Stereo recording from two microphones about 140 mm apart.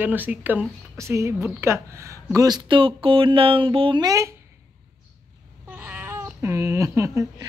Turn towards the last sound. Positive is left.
turn(degrees=-20)  # may be behind; listen again after turning